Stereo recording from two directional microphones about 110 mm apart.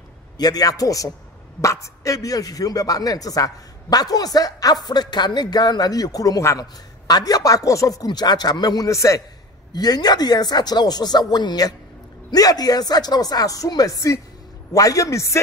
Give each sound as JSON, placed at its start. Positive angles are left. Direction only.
{"t": 0.4, "sound": "speech", "side_deg": 35}
{"t": 9.7, "sound": "a man's voice", "side_deg": 40}